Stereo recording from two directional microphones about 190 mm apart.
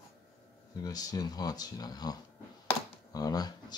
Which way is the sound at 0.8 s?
20° left (ahead or behind).